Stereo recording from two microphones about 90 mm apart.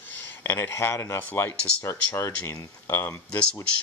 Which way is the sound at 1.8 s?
30° left (ahead or behind).